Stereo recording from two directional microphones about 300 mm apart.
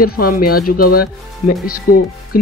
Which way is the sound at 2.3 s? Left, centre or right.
Left.